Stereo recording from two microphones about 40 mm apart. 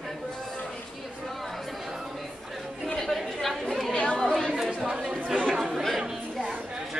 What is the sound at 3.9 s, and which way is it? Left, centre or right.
Chatter, centre.